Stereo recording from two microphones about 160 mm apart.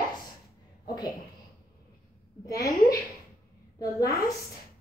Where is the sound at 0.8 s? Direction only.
25° left (ahead or behind).